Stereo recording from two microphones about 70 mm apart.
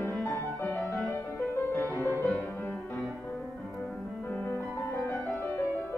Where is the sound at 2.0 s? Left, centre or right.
Left.